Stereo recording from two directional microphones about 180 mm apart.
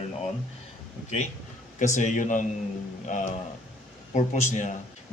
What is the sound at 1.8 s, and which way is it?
A man's voice, 45° left (ahead or behind).